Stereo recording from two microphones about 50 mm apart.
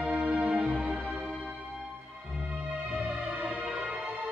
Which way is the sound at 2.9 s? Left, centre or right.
Right.